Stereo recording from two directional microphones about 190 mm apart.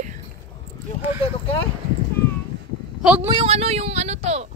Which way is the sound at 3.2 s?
30° right (ahead or behind).